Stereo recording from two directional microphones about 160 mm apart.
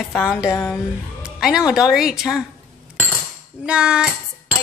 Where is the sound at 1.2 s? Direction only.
5° right (ahead or behind).